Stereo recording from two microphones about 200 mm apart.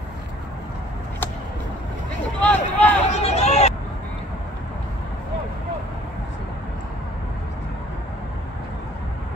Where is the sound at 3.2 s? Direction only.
30° left (ahead or behind).